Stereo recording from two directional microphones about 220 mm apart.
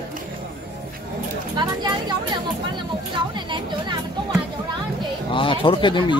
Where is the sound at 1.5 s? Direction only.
20° right (ahead or behind).